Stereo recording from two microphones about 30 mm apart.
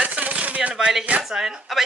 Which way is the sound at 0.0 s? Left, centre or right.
Right.